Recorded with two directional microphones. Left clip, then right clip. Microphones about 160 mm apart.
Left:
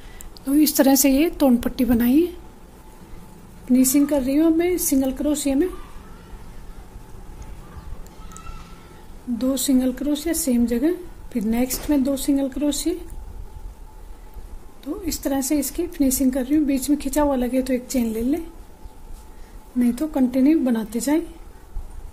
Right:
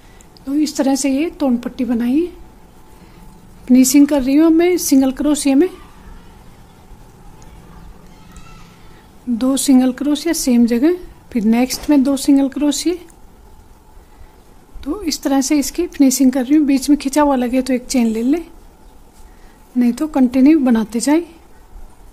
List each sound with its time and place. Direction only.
0.5 s a woman's voice: centre (ahead or behind)
3.6 s speech: 30° right (ahead or behind)
9.4 s speech: 35° right (ahead or behind)
14.8 s speech: 30° right (ahead or behind)
19.8 s a woman's voice: 25° right (ahead or behind)